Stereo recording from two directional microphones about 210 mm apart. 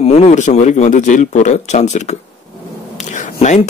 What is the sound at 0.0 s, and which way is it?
Speech, 30° left (ahead or behind).